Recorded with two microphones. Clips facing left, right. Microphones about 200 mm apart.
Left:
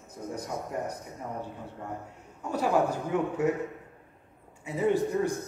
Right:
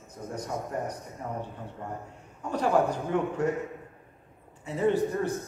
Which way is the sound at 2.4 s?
10° left (ahead or behind).